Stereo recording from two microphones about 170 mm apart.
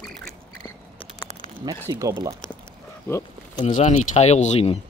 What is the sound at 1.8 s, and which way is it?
Speech, 20° right (ahead or behind).